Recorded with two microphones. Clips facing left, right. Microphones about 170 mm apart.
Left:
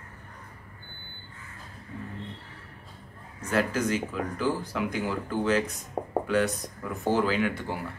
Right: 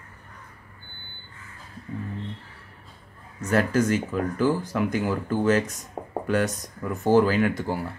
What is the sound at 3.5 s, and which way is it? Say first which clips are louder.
Speech: right 4 dB; 45° right (ahead or behind).